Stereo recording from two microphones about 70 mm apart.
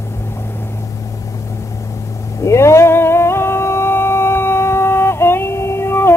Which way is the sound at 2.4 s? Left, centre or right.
Left.